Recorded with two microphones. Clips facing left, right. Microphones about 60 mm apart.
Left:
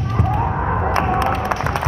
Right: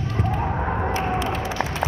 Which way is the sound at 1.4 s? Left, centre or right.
Left.